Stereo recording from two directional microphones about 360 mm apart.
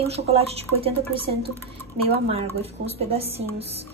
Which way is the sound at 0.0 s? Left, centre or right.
Centre.